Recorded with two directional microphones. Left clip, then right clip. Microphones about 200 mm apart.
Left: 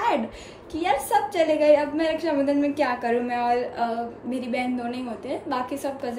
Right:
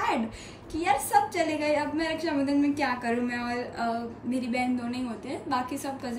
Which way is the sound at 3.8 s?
40° left (ahead or behind).